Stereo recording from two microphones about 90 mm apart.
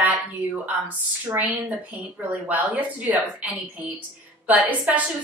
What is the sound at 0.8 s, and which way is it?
Speech, 20° right (ahead or behind).